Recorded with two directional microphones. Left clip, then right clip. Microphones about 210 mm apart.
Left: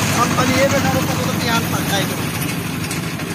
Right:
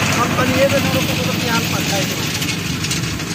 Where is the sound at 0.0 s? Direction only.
20° left (ahead or behind).